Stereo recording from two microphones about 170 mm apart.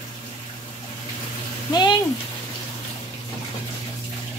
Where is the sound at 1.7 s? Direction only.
25° left (ahead or behind).